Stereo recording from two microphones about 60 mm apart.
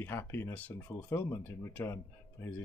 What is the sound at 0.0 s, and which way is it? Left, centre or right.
Speech, left.